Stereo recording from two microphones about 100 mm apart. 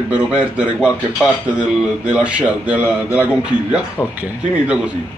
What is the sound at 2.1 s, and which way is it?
Speech, 10° right (ahead or behind).